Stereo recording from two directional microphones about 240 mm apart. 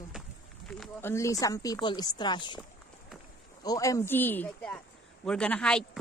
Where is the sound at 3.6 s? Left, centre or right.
Centre.